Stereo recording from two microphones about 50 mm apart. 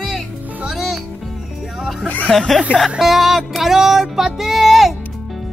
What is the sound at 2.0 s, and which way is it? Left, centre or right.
Speech, left.